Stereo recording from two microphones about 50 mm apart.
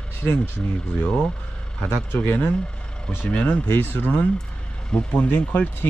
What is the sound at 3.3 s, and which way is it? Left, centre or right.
Speech, left.